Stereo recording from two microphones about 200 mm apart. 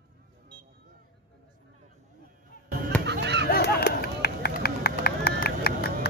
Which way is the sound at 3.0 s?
60° right (ahead or behind).